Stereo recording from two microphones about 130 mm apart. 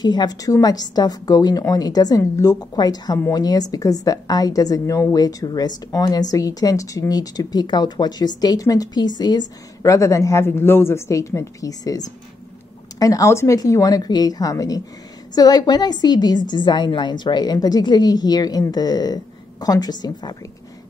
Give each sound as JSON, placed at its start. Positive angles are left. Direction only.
{"t": 0.0, "sound": "a woman's voice", "side_deg": 35}
{"t": 13.0, "sound": "a woman's voice", "side_deg": 25}